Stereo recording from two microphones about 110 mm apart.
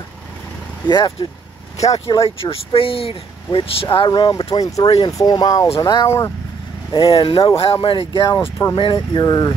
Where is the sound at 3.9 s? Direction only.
45° left (ahead or behind).